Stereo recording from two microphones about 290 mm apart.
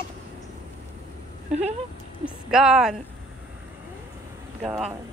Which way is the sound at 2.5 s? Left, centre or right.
Centre.